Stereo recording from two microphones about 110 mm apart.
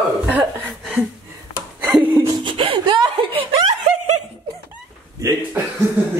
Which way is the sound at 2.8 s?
50° right (ahead or behind).